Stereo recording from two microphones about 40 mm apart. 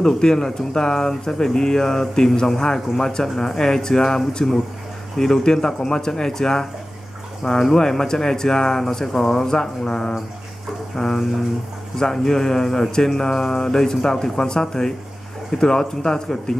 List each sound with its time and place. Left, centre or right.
0.0 s speech: centre
11.0 s speech: centre
12.0 s speech: centre